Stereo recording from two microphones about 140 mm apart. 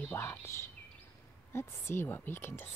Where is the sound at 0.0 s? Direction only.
15° left (ahead or behind).